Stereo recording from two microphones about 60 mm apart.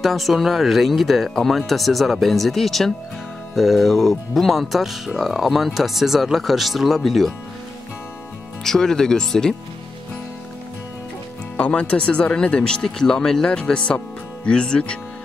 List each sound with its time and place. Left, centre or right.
0.0 s speech: centre
8.6 s speech: centre
11.5 s speech: left